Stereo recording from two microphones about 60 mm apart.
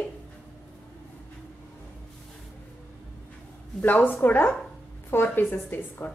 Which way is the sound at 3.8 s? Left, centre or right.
Left.